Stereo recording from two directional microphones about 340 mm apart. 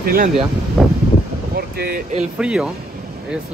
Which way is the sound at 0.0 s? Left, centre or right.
Right.